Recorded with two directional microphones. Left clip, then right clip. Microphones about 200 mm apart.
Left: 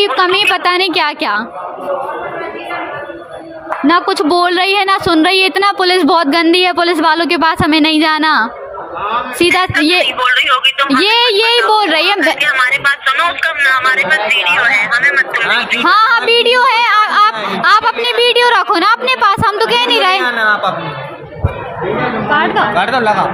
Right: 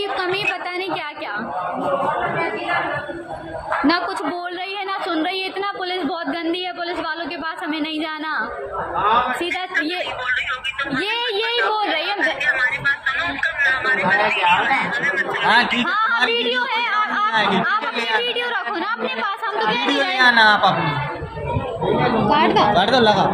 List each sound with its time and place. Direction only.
0.0 s a woman's voice: 40° left (ahead or behind)
3.8 s a woman's voice: 35° left (ahead or behind)
4.4 s a woman's voice: 60° left (ahead or behind)
20.2 s a woman's voice: 10° right (ahead or behind)
22.3 s a woman's voice: centre (ahead or behind)